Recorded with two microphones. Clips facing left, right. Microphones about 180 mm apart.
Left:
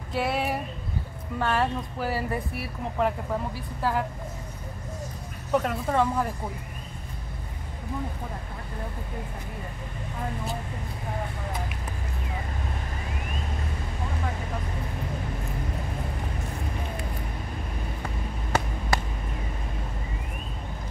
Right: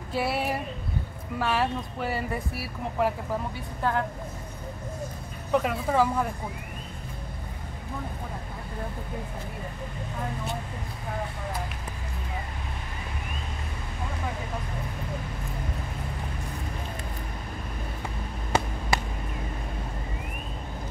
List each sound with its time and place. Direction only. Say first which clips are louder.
0.1 s speech: left 1 dB; 5° right (ahead or behind)
5.5 s speech: even; centre (ahead or behind)